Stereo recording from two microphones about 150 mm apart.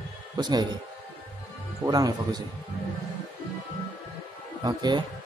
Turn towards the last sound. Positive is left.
turn(degrees=-30)  # may be behind; listen again after turning